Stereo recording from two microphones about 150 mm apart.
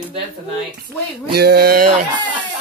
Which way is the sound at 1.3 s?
90° right.